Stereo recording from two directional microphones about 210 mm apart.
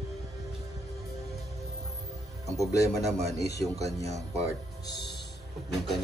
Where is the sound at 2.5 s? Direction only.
15° left (ahead or behind).